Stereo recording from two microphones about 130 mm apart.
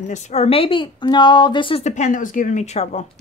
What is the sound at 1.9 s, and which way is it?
Speech, 65° left (ahead or behind).